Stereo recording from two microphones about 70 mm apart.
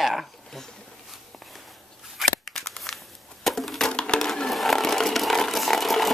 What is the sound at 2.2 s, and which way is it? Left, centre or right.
Scissors, centre.